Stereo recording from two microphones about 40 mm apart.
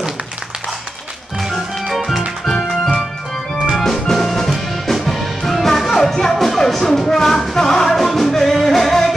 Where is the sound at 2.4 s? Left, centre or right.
Centre.